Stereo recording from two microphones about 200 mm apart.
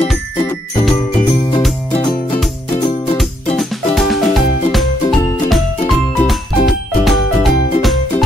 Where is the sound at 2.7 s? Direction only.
25° left (ahead or behind).